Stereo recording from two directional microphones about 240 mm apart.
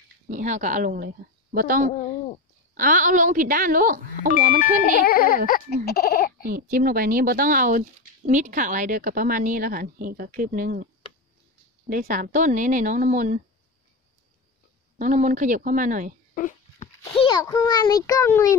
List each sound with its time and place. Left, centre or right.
0.3 s a woman's voice: right
5.0 s speech: left
6.4 s a woman's voice: right
11.9 s a woman's voice: right
15.0 s a woman's voice: right
16.3 s a child's voice: left; by 18.6 s centre